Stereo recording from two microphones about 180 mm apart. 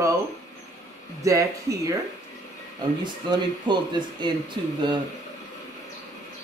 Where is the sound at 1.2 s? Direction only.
15° right (ahead or behind).